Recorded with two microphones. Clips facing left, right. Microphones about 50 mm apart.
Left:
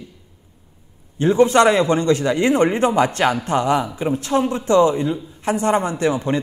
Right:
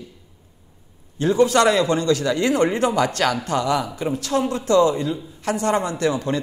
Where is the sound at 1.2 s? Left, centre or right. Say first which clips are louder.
Left 3 dB; left.